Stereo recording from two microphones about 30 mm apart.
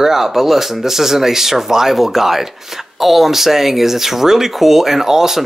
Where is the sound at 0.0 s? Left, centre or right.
Centre.